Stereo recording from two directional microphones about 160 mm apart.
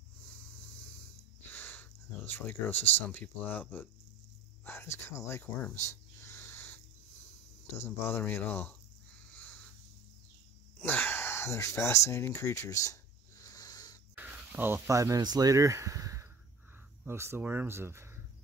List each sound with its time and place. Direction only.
1.5 s speech: 10° left (ahead or behind)
4.6 s a sound: 15° left (ahead or behind)
7.7 s speech: 15° left (ahead or behind)
10.9 s speech: 10° left (ahead or behind)
12.4 s a sound: 20° left (ahead or behind)
14.1 s speech: 10° right (ahead or behind)